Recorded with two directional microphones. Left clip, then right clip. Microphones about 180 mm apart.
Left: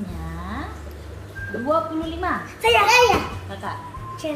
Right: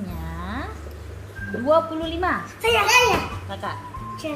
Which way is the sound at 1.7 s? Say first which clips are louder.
Right 3 dB; 65° right (ahead or behind).